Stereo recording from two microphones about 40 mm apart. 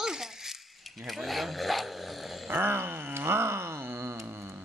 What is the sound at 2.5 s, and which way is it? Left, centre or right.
Groan, right.